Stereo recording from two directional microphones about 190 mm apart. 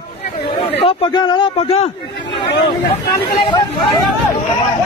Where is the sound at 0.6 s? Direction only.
30° left (ahead or behind).